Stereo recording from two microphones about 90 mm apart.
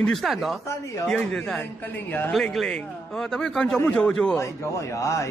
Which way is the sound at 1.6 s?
25° left (ahead or behind).